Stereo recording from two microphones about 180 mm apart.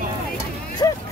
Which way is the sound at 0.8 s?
15° left (ahead or behind).